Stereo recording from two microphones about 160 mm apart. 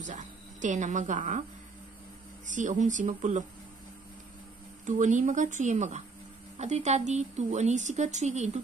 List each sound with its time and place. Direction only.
0.0 s speech: 50° right (ahead or behind)
2.4 s a woman's voice: 50° right (ahead or behind)
4.8 s a woman's voice: 50° right (ahead or behind)